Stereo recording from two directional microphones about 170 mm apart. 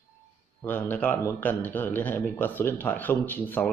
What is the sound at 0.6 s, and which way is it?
A man's voice, 10° left (ahead or behind).